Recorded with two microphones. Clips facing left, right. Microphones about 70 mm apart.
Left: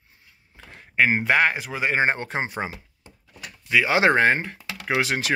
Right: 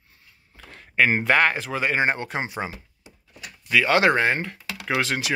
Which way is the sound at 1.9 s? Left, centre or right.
Left.